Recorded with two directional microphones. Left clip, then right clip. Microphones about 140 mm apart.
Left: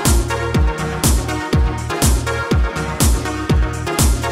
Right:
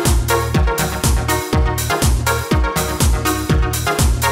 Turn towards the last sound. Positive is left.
turn(degrees=0)  # may be behind; listen again after turning